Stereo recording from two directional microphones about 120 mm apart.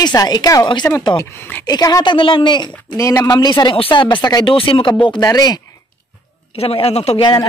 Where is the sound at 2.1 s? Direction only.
45° left (ahead or behind).